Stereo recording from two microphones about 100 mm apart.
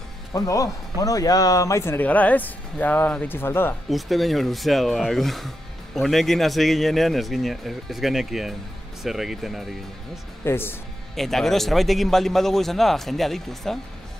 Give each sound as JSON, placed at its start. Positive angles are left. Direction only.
{"t": 0.3, "sound": "speech", "side_deg": 35}
{"t": 2.0, "sound": "speech", "side_deg": 15}
{"t": 3.9, "sound": "speech", "side_deg": 0}
{"t": 10.4, "sound": "speech", "side_deg": 25}
{"t": 11.1, "sound": "speech", "side_deg": 5}